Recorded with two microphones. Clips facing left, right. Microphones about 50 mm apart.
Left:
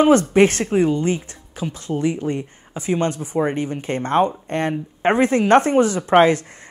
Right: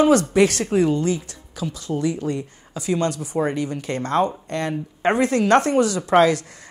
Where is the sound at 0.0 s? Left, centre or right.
Left.